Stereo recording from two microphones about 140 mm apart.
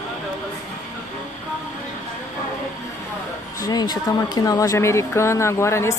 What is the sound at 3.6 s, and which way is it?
Speech, 30° left (ahead or behind).